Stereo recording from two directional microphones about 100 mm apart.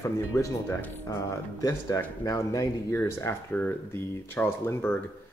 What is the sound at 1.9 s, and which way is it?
Speech, 40° left (ahead or behind).